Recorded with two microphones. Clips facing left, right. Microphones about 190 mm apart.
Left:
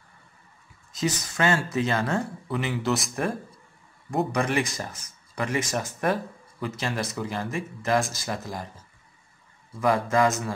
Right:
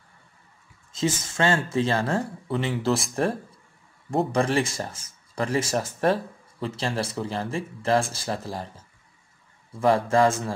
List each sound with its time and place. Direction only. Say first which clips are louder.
0.9 s speech: right 2 dB; 25° right (ahead or behind)
9.8 s speech: right 2 dB; 30° right (ahead or behind)